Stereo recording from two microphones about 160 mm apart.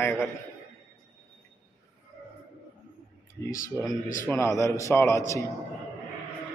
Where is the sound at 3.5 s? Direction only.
20° left (ahead or behind).